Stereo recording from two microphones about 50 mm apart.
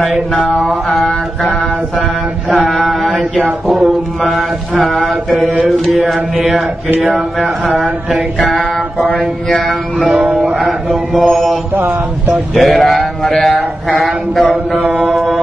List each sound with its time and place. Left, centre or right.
0.4 s mantra: centre
7.0 s a sound: centre
8.1 s mantra: centre
9.5 s a sound: centre
9.9 s music: centre
11.1 s mantra: centre
11.7 s a sound: right
12.5 s mantra: centre
13.4 s speech: centre
13.9 s mantra: centre